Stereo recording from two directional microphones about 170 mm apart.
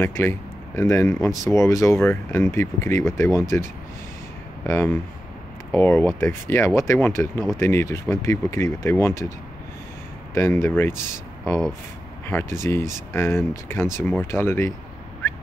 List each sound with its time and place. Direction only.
0.0 s speech: 15° left (ahead or behind)
4.6 s speech: 15° left (ahead or behind)
10.3 s speech: 15° left (ahead or behind)
12.3 s speech: 15° left (ahead or behind)